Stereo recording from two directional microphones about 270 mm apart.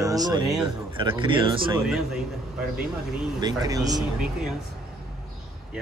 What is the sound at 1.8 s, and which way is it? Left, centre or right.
Speech, centre.